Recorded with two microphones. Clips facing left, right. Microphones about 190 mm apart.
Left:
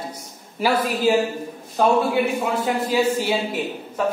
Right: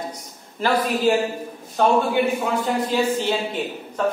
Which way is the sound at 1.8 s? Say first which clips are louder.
Even; 5° left (ahead or behind).